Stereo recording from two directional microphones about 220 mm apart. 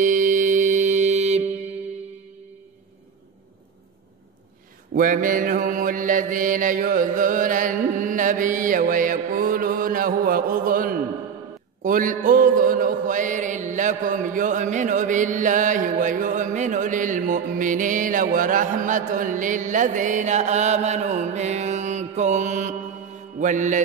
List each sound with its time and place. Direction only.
0.0 s music: 35° right (ahead or behind)
4.9 s mantra: 35° right (ahead or behind)